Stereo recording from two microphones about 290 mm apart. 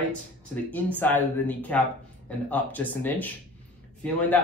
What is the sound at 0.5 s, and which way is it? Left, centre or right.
Speech, centre.